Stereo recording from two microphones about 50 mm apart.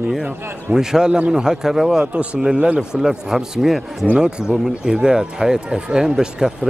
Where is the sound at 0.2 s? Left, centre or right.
Centre.